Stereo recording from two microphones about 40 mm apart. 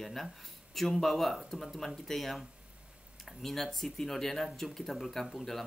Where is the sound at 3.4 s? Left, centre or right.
Centre.